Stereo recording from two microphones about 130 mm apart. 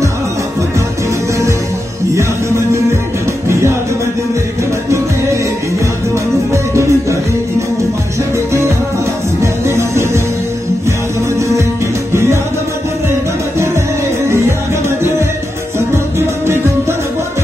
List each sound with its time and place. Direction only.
3.4 s music: 20° right (ahead or behind)
4.9 s music: 20° right (ahead or behind)
6.5 s music: 20° right (ahead or behind)
9.4 s music: 20° right (ahead or behind)
11.3 s music: 25° right (ahead or behind)
15.9 s music: 20° right (ahead or behind)